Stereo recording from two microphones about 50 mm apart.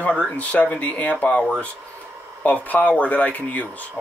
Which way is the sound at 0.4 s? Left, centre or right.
Left.